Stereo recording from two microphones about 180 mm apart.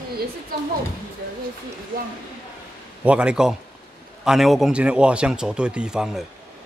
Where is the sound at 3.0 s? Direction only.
5° right (ahead or behind).